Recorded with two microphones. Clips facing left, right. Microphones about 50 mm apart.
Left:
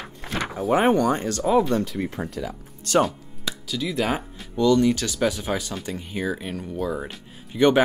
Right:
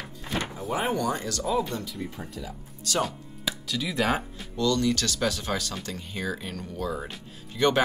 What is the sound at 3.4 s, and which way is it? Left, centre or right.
Speech, centre.